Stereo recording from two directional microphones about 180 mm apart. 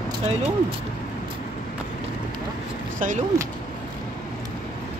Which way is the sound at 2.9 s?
45° right (ahead or behind).